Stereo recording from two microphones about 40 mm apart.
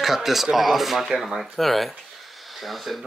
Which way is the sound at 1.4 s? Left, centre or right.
Centre.